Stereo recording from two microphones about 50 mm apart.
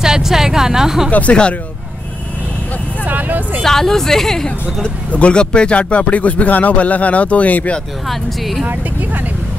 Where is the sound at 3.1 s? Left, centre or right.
Right.